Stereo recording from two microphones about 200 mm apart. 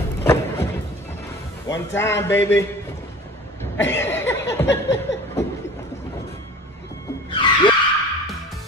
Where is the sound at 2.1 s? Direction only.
65° left (ahead or behind).